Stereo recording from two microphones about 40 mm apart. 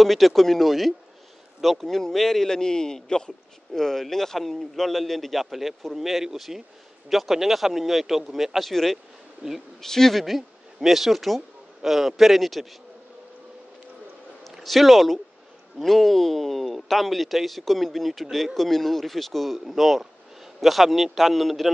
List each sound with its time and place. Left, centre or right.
0.0 s a man's voice: centre
9.4 s speech: centre
9.8 s a man's voice: centre
10.2 s speech: centre
14.5 s speech: centre